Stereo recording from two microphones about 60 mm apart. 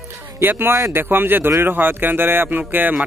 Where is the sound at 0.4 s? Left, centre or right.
Right.